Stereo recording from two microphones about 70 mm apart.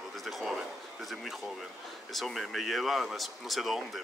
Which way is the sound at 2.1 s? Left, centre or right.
Centre.